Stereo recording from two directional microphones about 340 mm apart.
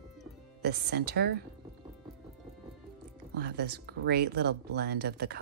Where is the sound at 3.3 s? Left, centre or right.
Right.